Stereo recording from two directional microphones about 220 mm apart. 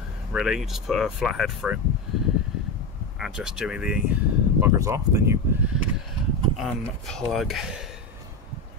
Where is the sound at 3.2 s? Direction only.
5° right (ahead or behind).